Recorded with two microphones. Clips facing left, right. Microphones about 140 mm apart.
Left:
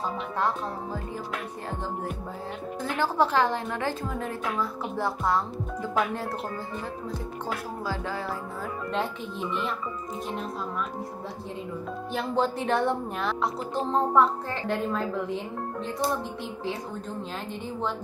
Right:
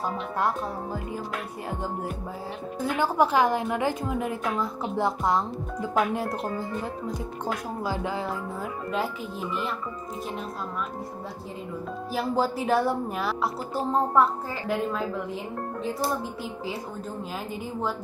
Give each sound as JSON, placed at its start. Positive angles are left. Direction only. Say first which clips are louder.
{"t": 2.8, "sound": "a woman's voice", "louder": "right 2 dB", "side_deg": -10}
{"t": 7.8, "sound": "a woman's voice", "louder": "right 3 dB", "side_deg": -15}
{"t": 8.9, "sound": "speech", "louder": "right 1 dB", "side_deg": -5}
{"t": 12.1, "sound": "speech", "louder": "right 1 dB", "side_deg": -5}